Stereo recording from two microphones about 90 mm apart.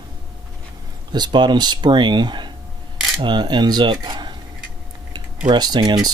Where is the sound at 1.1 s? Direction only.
55° right (ahead or behind).